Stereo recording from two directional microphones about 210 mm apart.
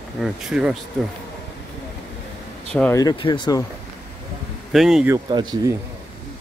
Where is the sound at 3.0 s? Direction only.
20° left (ahead or behind).